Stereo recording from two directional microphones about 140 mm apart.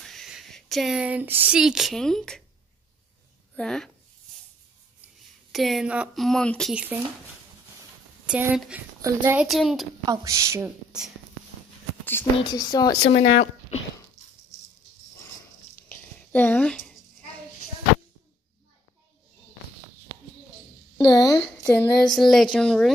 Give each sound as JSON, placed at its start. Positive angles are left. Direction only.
{"t": 0.0, "sound": "speech", "side_deg": 0}
{"t": 3.5, "sound": "speech", "side_deg": 5}
{"t": 5.5, "sound": "speech", "side_deg": 0}
{"t": 6.7, "sound": "a child's voice", "side_deg": -10}
{"t": 8.3, "sound": "a child's voice", "side_deg": -15}
{"t": 9.5, "sound": "speech", "side_deg": 0}
{"t": 10.0, "sound": "speech", "side_deg": -20}
{"t": 12.0, "sound": "a sound", "side_deg": 15}
{"t": 12.4, "sound": "speech", "side_deg": 30}
{"t": 13.1, "sound": "speech", "side_deg": 60}
{"t": 16.2, "sound": "a sound", "side_deg": 10}
{"t": 21.1, "sound": "a woman's voice", "side_deg": 30}
{"t": 21.4, "sound": "a sound", "side_deg": 5}
{"t": 22.0, "sound": "speech", "side_deg": 0}